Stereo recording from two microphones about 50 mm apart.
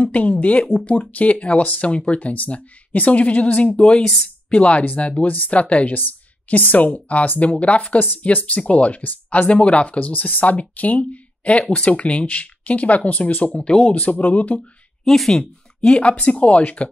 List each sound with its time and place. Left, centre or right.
0.0 s speech: left
0.7 s speech: left
3.7 s speech: centre
4.5 s speech: left
13.9 s speech: left
15.0 s speech: centre
15.9 s speech: left